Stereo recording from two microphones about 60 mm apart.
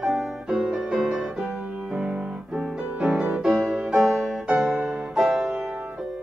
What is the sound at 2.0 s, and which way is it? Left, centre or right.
Music, centre.